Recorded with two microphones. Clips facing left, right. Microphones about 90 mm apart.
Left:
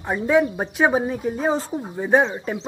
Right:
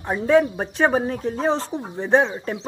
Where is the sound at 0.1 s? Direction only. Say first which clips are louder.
Right 1 dB; 10° left (ahead or behind).